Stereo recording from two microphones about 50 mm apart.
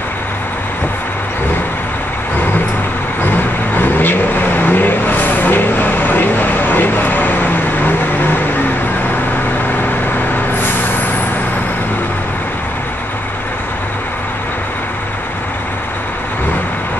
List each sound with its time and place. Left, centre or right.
3.3 s vehicle: left